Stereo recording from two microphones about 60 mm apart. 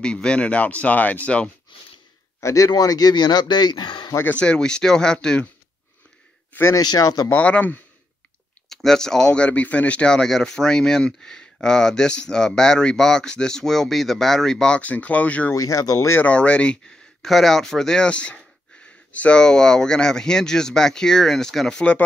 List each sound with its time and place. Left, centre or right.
0.0 s speech: centre
2.4 s a man's voice: left
4.4 s speech: centre
6.7 s speech: left
7.4 s speech: left
8.6 s speech: centre
14.8 s speech: left
15.5 s speech: left
16.3 s speech: centre
17.2 s speech: centre